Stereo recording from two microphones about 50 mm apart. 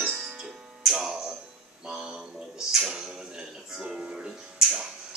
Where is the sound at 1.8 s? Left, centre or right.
Centre.